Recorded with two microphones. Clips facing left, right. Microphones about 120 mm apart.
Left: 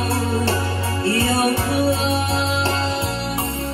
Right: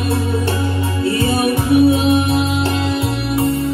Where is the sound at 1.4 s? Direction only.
30° left (ahead or behind).